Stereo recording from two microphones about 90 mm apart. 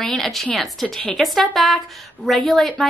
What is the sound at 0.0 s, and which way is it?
A woman's voice, 5° left (ahead or behind).